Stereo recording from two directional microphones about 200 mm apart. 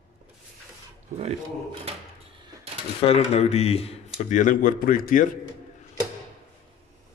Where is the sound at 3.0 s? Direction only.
30° left (ahead or behind).